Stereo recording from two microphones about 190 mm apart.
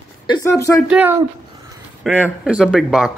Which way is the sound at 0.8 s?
5° right (ahead or behind).